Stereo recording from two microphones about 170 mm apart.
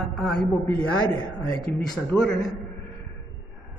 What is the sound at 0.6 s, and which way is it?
A woman's voice, 20° left (ahead or behind).